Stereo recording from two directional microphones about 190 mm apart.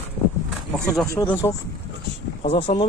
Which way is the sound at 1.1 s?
15° left (ahead or behind).